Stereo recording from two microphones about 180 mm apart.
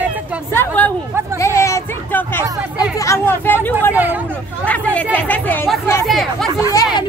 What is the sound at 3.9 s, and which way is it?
Hubbub, 10° right (ahead or behind).